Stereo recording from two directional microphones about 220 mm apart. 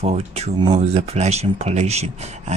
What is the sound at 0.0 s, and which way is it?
Speech, 30° right (ahead or behind).